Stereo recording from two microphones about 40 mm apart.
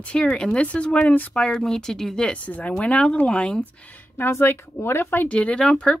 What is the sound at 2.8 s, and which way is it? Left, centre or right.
Speech, left.